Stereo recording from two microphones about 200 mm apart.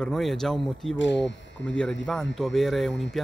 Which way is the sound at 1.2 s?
65° left (ahead or behind).